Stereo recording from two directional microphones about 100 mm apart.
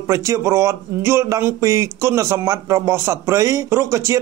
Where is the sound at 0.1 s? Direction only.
30° right (ahead or behind).